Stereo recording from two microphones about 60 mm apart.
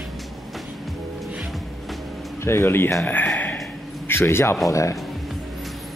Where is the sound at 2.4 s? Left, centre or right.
Left.